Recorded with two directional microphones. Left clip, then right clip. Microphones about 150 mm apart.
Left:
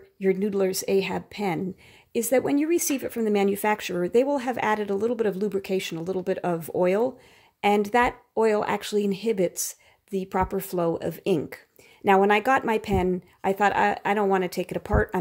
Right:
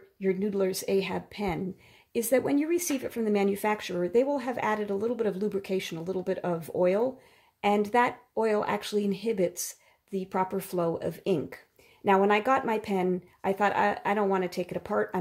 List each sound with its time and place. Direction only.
0.2 s speech: 35° left (ahead or behind)